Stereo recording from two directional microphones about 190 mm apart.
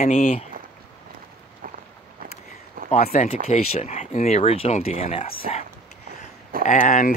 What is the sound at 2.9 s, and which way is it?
Speech, 40° left (ahead or behind).